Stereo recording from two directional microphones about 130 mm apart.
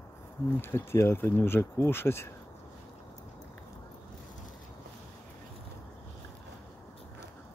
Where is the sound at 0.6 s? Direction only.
20° left (ahead or behind).